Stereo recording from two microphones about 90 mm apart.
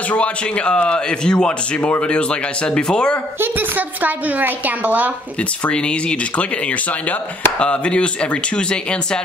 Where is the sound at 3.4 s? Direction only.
20° right (ahead or behind).